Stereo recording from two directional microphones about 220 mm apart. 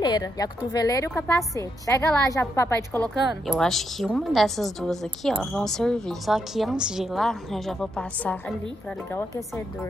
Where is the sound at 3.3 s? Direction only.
Centre (ahead or behind).